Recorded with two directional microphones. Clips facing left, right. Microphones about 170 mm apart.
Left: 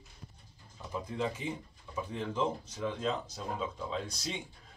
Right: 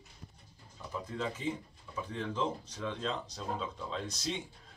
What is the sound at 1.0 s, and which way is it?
Speech, 10° left (ahead or behind).